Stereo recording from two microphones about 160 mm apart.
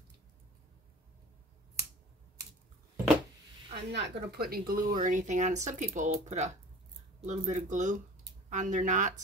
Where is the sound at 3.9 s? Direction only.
80° right.